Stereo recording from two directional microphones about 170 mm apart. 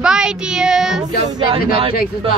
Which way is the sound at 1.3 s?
30° right (ahead or behind).